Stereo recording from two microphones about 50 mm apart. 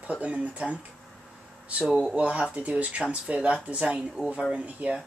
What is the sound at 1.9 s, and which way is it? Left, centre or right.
Speech, centre.